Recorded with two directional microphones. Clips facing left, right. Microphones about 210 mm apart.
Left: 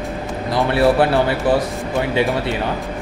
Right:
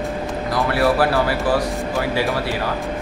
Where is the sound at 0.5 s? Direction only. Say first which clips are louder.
Left 3 dB; 25° left (ahead or behind).